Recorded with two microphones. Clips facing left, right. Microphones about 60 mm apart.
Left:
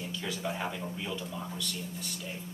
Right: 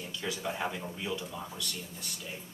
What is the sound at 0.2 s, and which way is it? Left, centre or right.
Speech, centre.